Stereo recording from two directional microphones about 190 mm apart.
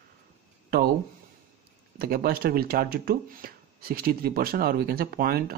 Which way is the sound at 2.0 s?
50° right (ahead or behind).